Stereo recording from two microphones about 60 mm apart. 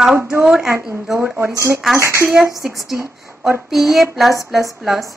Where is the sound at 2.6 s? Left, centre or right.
Centre.